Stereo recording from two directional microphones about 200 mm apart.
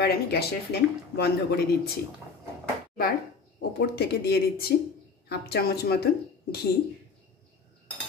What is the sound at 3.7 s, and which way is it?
Speech, 55° left (ahead or behind).